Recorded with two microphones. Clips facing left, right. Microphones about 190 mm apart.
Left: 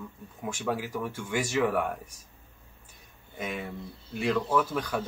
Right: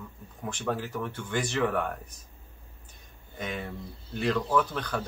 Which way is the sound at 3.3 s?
5° left (ahead or behind).